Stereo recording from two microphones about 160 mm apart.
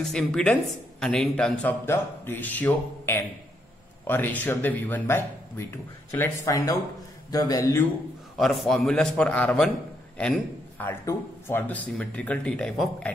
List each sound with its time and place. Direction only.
0.0 s a man's voice: 5° left (ahead or behind); by 7.8 s 20° left (ahead or behind)
8.4 s a man's voice: centre (ahead or behind)
10.8 s speech: 15° left (ahead or behind)